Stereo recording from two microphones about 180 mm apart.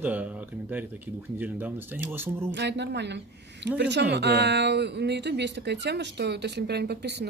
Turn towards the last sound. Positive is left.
turn(degrees=-65)  # may be behind; listen again after turning